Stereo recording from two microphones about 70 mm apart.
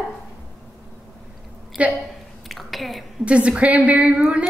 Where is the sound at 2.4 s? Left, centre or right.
Centre.